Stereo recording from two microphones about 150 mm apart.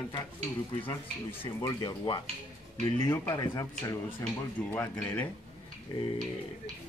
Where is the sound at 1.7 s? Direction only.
30° left (ahead or behind).